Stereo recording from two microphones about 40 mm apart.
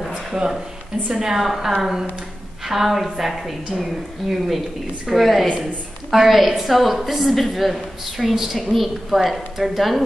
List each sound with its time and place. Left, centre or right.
0.3 s a woman's voice: centre
1.4 s a woman's voice: centre